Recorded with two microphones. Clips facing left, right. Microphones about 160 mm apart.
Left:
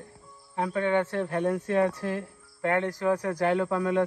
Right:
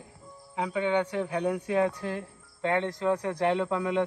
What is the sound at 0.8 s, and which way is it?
Speech, 15° right (ahead or behind).